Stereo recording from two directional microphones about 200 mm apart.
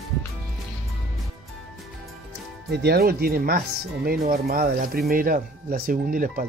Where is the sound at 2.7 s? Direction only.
55° right (ahead or behind).